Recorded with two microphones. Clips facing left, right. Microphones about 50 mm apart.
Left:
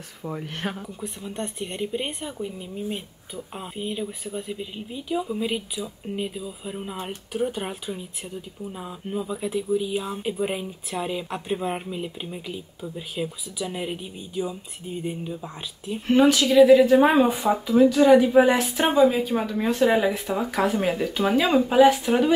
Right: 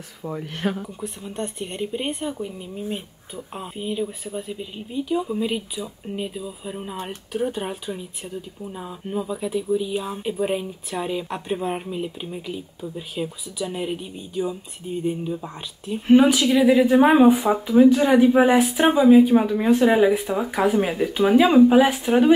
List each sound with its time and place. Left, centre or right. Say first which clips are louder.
0.2 s speech: right 4 dB; centre
17.5 s speech: right 3 dB; right